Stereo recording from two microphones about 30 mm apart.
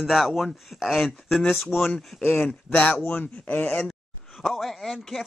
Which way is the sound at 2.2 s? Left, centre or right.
Left.